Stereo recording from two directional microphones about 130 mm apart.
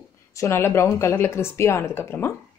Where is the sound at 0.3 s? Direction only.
20° left (ahead or behind).